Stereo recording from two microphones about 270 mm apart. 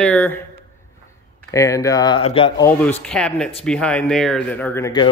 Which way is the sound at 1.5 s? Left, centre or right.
Centre.